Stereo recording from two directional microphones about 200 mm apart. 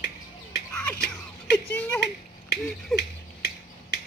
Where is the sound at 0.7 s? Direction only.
10° left (ahead or behind).